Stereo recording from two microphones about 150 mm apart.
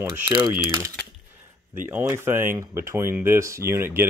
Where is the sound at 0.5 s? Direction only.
15° right (ahead or behind).